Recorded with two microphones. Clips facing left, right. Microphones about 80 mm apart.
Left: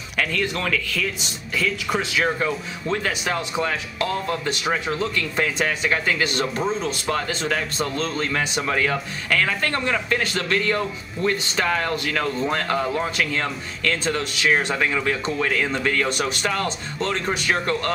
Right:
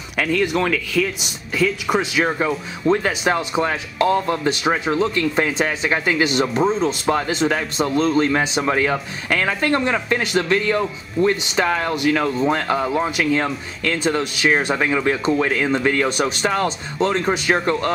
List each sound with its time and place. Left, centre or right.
0.2 s a man's voice: centre